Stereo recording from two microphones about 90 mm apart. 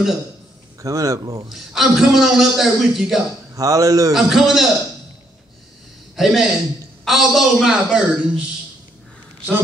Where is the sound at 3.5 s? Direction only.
40° right (ahead or behind).